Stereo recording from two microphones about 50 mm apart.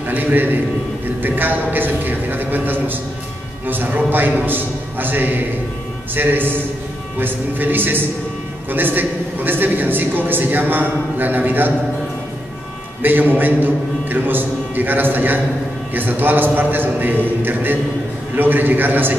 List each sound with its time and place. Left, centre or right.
0.1 s a man's voice: right
13.0 s a man's voice: right